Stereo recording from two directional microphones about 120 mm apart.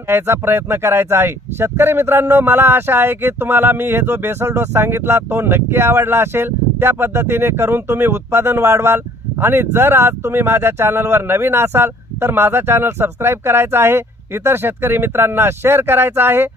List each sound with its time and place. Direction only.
0.1 s speech: 20° right (ahead or behind)